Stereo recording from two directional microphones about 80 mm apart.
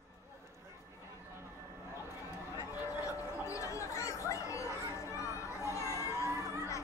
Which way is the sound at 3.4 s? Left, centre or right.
Left.